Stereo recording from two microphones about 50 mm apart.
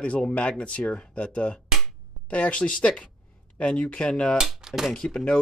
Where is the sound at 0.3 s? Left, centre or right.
Left.